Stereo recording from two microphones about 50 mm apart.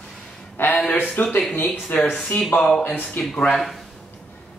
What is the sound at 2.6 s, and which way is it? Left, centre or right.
Speech, centre.